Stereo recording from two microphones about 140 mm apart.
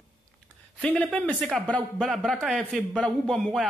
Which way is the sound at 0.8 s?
5° left (ahead or behind).